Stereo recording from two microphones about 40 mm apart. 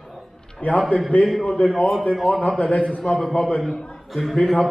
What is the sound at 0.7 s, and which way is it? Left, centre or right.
Speech, left.